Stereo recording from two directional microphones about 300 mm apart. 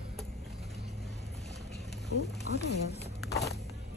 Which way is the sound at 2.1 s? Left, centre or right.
Left.